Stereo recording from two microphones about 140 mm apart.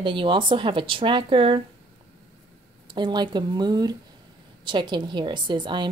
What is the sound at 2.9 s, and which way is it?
A woman's voice, 30° right (ahead or behind).